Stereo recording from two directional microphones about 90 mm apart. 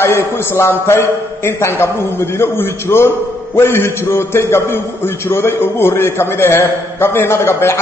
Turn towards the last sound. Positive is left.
turn(degrees=25)  # may be behind; listen again after turning